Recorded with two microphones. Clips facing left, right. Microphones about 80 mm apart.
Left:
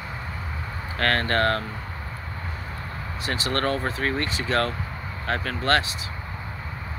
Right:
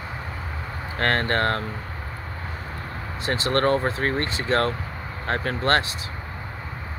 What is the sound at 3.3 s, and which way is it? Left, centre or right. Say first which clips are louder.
Speech: right 4 dB; right.